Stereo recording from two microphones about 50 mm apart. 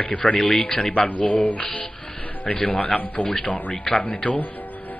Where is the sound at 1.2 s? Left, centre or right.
Left.